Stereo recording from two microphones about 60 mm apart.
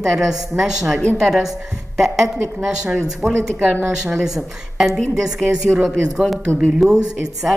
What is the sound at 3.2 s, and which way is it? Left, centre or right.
Speech, right.